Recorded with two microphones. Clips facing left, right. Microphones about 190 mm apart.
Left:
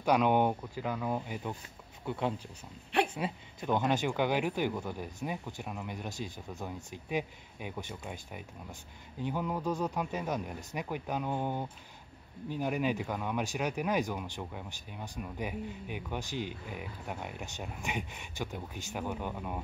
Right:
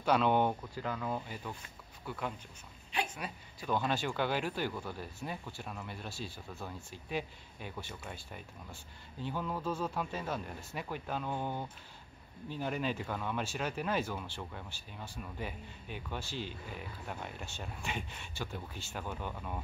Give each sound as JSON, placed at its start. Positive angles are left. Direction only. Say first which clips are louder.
{"t": 0.0, "sound": "speech", "louder": "left 2 dB", "side_deg": 15}